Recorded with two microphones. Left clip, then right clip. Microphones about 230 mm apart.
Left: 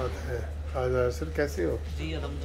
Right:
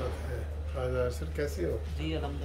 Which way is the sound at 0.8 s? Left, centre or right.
Centre.